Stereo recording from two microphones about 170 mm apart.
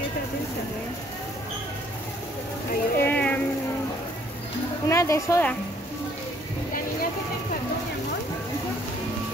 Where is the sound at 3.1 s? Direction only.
10° left (ahead or behind).